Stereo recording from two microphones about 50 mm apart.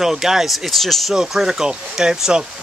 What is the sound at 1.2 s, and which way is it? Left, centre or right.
Speech, centre.